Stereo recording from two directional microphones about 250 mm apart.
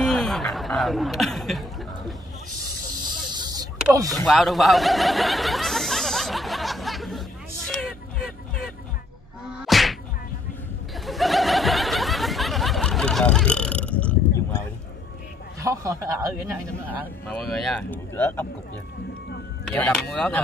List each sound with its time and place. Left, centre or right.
0.0 s speech: centre
3.3 s vehicle: centre
3.8 s speech: centre
4.2 s chuckle: centre
9.7 s whip: centre
11.1 s snicker: centre
15.6 s a man's voice: centre
17.3 s speech: centre
19.7 s speech: centre